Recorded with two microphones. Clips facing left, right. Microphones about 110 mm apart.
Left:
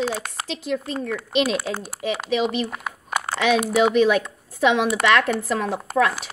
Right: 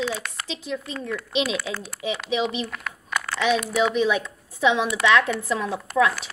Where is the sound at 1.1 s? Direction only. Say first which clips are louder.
Left 3 dB; 45° left (ahead or behind).